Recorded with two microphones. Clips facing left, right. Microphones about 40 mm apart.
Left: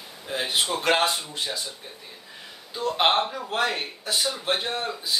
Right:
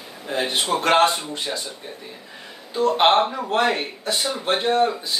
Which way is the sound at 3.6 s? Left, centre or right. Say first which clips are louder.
Right 5 dB; right.